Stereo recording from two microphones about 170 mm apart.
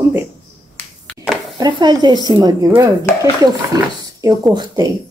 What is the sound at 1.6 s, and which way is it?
Speech, 25° right (ahead or behind).